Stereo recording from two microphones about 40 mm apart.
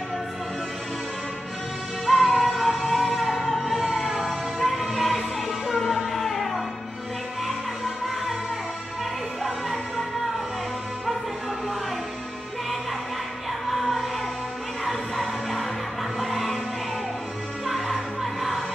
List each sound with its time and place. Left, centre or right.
2.0 s music: centre
9.4 s music: centre
13.7 s music: centre
17.6 s music: centre